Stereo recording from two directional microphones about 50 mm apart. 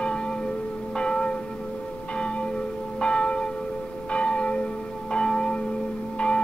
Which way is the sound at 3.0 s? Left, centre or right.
Left.